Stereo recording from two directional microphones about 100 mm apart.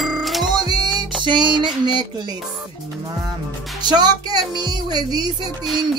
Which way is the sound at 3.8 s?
45° right (ahead or behind).